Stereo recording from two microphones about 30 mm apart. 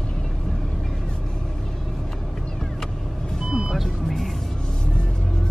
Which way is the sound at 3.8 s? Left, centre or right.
Centre.